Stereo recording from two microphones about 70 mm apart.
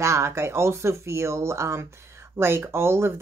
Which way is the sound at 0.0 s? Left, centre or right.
Right.